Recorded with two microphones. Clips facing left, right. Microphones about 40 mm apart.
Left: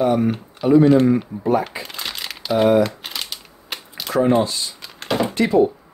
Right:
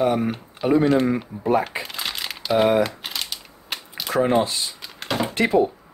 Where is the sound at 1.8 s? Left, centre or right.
Centre.